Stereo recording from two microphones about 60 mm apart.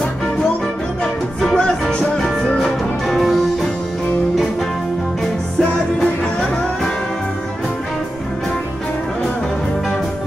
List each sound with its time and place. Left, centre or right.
1.6 s music: centre
2.8 s music: centre
5.6 s music: centre